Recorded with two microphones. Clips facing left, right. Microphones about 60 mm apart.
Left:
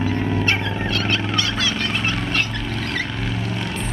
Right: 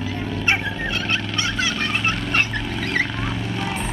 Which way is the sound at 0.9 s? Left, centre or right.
Centre.